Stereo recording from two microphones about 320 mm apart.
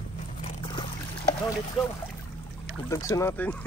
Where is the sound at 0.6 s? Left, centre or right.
Centre.